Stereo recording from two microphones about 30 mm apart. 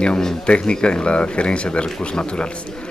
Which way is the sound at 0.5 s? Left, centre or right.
Left.